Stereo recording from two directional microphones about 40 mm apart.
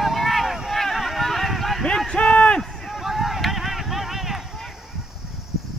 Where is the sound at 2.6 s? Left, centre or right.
Centre.